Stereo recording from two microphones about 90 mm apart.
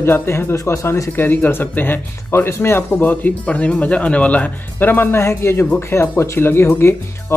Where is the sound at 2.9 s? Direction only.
15° left (ahead or behind).